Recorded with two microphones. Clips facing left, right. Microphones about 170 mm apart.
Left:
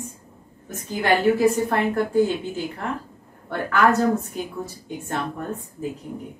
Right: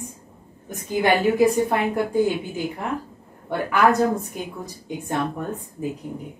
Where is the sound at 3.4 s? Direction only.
15° right (ahead or behind).